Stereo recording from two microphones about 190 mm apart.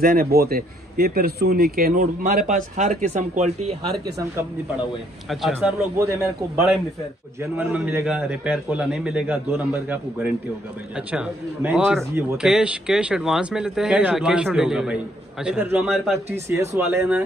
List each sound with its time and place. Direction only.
0.0 s a man's voice: 50° right (ahead or behind)
5.3 s a man's voice: 5° right (ahead or behind)
7.3 s a man's voice: 10° right (ahead or behind)